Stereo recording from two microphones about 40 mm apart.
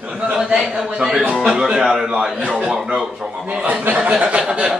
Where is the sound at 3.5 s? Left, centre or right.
Right.